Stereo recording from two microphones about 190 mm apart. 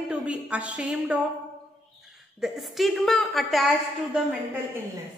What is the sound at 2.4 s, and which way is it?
A woman's voice, centre (ahead or behind).